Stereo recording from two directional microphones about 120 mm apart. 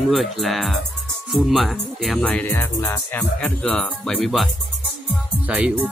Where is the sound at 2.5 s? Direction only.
20° left (ahead or behind).